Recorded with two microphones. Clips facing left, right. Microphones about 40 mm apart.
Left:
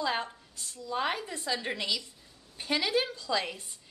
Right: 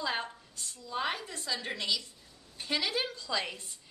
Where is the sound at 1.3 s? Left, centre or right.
Centre.